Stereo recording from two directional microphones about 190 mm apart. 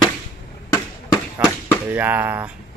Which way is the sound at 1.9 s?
10° right (ahead or behind).